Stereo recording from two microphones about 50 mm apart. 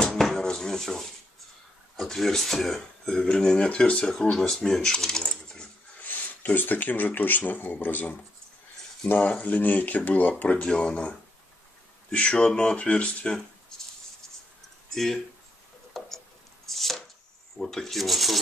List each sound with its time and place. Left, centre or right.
0.0 s a sound: centre
2.0 s speech: centre
3.6 s speech: left
4.0 s speech: centre
4.9 s keys jangling: centre
6.0 s speech: left
16.0 s tick-tock: centre
16.6 s chopping: centre
17.6 s speech: centre